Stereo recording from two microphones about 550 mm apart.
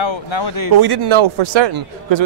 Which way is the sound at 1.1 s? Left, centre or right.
Right.